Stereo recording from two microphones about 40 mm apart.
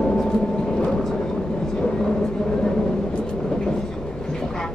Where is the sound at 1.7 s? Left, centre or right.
Centre.